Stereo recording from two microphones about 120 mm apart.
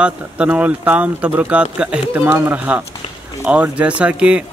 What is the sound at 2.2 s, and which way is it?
Speech, 25° right (ahead or behind).